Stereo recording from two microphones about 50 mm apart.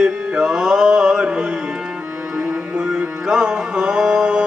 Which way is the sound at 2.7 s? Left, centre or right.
Right.